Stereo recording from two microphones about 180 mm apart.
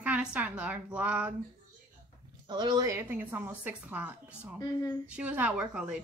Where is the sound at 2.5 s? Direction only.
25° right (ahead or behind).